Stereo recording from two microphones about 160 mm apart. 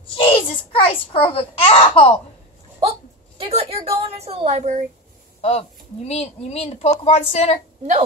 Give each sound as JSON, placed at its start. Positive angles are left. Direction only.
{"t": 0.1, "sound": "a child's voice", "side_deg": 35}
{"t": 2.8, "sound": "a sound", "side_deg": -40}
{"t": 5.4, "sound": "speech", "side_deg": 40}